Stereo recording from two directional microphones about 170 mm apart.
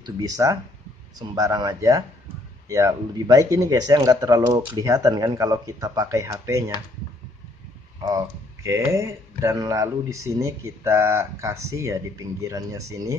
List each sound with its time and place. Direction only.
0.0 s speech: 20° right (ahead or behind)
8.0 s speech: 20° right (ahead or behind)